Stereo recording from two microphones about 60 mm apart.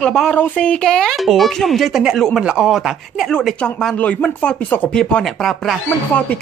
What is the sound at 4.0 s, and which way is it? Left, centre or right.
Speech, left.